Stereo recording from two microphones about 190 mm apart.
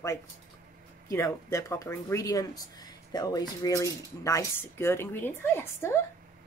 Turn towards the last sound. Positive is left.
turn(degrees=15)  # may be behind; listen again after turning